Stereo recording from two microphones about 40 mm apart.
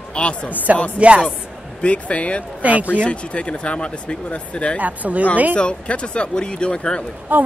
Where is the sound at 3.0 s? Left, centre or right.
Left.